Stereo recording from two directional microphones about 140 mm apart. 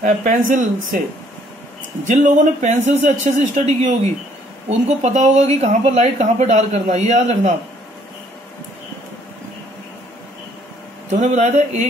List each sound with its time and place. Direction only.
0.0 s speech: 70° right (ahead or behind)
2.0 s speech: 65° right (ahead or behind)
11.1 s speech: 55° right (ahead or behind)